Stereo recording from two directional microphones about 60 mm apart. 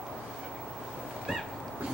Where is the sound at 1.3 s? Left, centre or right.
Centre.